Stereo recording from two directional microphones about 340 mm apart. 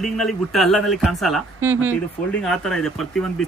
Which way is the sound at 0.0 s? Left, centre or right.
Centre.